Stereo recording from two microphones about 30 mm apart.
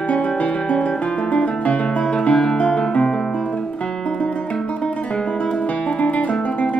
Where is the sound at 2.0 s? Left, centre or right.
Left.